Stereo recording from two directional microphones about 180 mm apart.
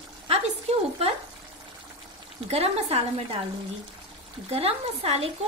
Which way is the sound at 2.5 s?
35° right (ahead or behind).